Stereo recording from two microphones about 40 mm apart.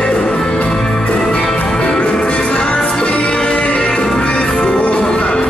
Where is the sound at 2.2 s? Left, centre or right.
Left.